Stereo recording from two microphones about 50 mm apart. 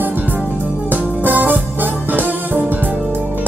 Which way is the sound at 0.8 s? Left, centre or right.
Right.